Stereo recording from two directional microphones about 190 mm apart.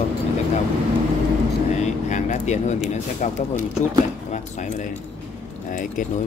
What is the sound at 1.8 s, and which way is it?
Speech, 40° left (ahead or behind).